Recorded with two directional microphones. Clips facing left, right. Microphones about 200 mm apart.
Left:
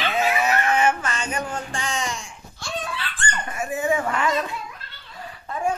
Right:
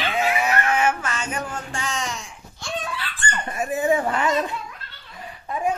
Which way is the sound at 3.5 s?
35° right (ahead or behind).